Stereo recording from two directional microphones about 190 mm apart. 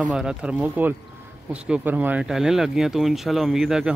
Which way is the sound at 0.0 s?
5° right (ahead or behind).